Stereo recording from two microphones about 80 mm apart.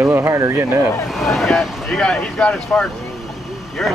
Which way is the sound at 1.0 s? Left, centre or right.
Centre.